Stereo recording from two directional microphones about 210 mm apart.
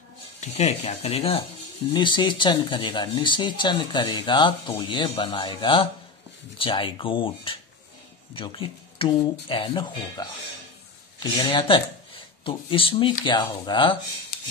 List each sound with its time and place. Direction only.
0.4 s speech: 30° left (ahead or behind)
11.3 s speech: 25° left (ahead or behind)